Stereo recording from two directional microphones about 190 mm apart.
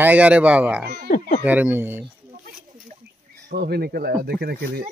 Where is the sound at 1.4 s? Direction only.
10° right (ahead or behind).